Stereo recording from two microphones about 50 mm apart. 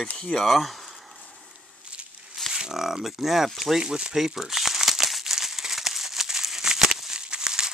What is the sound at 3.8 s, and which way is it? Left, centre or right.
Crumpling, centre.